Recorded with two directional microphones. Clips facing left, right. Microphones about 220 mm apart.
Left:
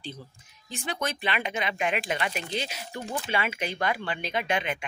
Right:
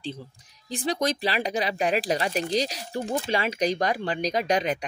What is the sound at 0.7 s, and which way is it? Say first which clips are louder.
Speech: right 6 dB; 35° right (ahead or behind).